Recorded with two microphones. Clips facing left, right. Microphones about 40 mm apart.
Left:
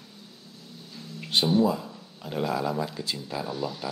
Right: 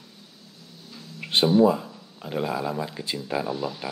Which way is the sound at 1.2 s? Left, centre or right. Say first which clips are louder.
Right 4 dB; right.